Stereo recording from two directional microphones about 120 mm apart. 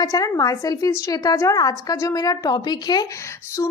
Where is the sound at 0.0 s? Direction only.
30° left (ahead or behind).